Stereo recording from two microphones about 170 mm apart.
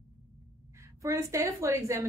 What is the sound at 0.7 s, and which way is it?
A woman's voice, 15° right (ahead or behind).